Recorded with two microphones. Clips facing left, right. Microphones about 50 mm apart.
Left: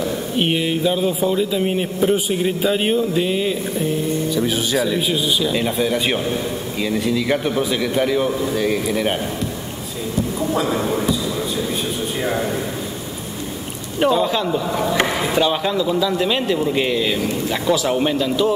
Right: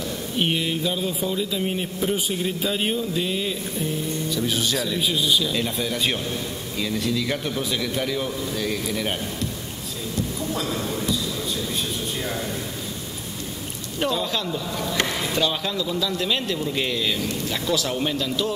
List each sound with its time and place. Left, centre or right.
0.0 s speech: centre
12.2 s speech: left
13.9 s speech: centre